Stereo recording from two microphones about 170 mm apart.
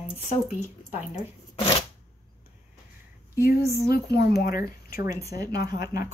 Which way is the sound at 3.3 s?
65° left (ahead or behind).